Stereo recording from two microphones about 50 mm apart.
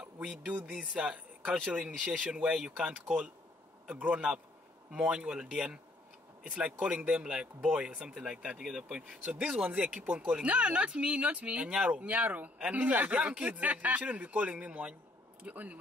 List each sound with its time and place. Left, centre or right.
0.0 s a man's voice: right
5.3 s speech: centre
6.4 s a man's voice: right
8.5 s speech: centre
9.2 s a man's voice: right